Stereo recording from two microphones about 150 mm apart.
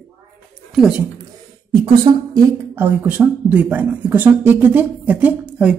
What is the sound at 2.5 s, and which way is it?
Speech, 15° right (ahead or behind).